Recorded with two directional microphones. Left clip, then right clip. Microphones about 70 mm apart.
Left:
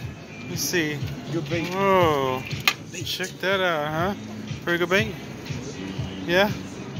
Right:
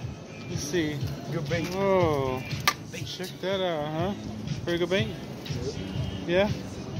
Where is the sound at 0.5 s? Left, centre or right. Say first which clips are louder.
Left 4 dB; centre.